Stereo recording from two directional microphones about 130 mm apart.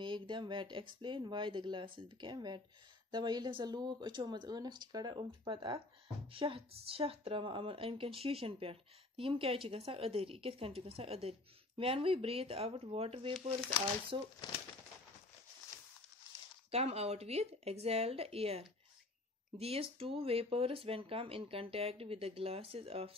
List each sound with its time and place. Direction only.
0.0 s a woman's voice: 35° right (ahead or behind)
16.7 s a woman's voice: 50° right (ahead or behind)